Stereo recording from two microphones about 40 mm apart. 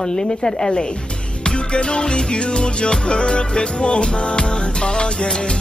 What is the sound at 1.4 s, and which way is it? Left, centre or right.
Music, left.